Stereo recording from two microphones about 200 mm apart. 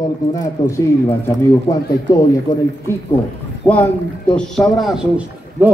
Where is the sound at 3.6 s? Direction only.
10° left (ahead or behind).